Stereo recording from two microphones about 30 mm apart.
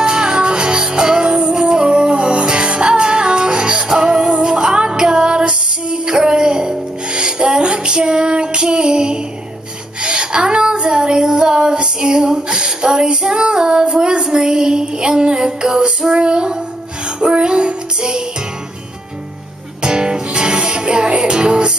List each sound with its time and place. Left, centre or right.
0.0 s music: right
10.0 s female singing: right
17.2 s music: right
19.8 s music: right